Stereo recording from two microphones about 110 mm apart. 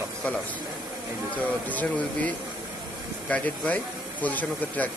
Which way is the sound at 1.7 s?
15° left (ahead or behind).